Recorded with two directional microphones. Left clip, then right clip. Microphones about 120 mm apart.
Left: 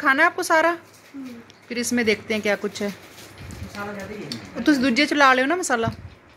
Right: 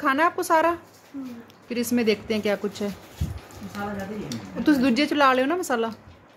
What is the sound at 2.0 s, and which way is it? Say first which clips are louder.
Speech: left 2 dB; 5° right (ahead or behind).